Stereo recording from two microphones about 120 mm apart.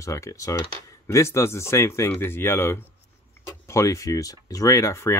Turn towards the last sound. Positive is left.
turn(degrees=25)  # may be behind; listen again after turning